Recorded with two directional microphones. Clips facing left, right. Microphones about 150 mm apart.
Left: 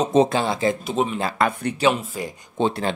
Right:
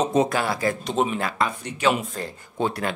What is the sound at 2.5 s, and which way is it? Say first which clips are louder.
Speech: left 3 dB; 25° left (ahead or behind).